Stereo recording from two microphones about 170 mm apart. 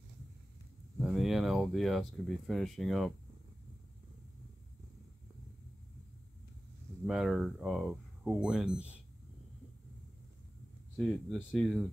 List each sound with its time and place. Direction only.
1.0 s speech: centre (ahead or behind)
7.1 s speech: centre (ahead or behind)
11.2 s speech: centre (ahead or behind)